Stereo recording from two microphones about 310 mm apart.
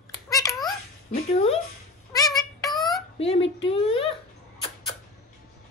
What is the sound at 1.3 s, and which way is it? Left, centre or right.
Speech, centre.